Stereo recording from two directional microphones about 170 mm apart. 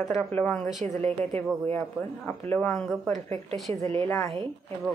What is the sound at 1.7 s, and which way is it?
Speech, 10° left (ahead or behind).